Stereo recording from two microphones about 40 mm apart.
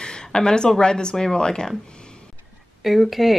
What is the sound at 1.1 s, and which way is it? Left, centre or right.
Speech, centre.